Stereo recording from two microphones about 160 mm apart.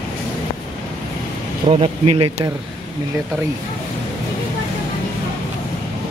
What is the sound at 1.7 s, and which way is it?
Speech, 35° right (ahead or behind).